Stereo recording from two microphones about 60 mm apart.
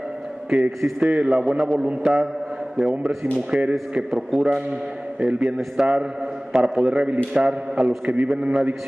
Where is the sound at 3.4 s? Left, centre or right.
Centre.